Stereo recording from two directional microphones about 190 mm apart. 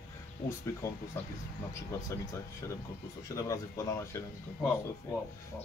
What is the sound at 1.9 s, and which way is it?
Speech, 15° left (ahead or behind).